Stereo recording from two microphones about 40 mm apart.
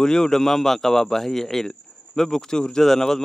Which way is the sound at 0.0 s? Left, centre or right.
Centre.